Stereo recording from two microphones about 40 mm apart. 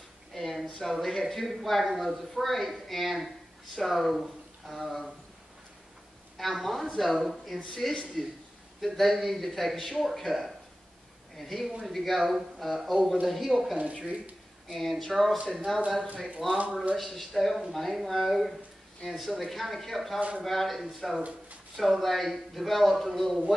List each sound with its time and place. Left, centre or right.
0.3 s a sound: centre
0.9 s speech: centre
6.3 s speech: centre
14.0 s speech: right
14.7 s speech: centre
20.2 s speech: right
20.4 s speech: centre
21.2 s speech: right
21.7 s speech: centre